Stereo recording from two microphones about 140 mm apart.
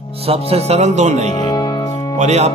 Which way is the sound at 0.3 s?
45° right (ahead or behind).